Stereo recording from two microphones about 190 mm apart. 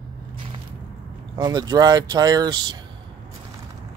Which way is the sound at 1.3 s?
20° right (ahead or behind).